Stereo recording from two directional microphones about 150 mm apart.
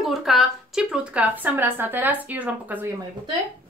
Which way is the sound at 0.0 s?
Centre (ahead or behind).